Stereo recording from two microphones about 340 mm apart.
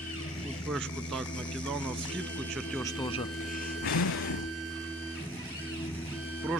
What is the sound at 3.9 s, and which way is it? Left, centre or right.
Music, left.